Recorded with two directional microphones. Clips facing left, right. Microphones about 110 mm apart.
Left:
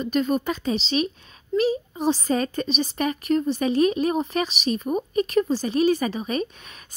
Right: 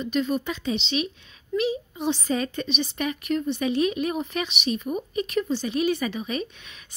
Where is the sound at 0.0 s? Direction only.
45° left (ahead or behind).